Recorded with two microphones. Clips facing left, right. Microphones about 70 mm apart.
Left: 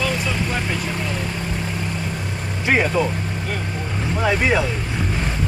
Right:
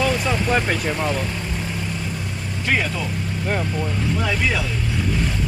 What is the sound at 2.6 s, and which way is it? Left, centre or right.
Speech, left.